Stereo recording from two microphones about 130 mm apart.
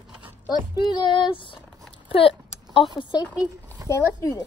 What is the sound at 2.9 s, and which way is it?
Child singing, 35° left (ahead or behind).